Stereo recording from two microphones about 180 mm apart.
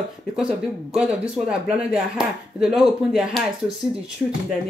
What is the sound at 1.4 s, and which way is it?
Speech, 5° right (ahead or behind).